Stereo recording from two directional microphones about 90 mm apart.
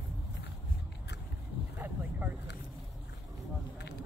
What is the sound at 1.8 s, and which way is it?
Vehicle, 20° right (ahead or behind).